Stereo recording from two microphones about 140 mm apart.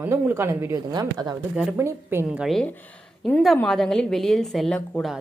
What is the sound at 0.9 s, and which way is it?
Speech, 30° right (ahead or behind).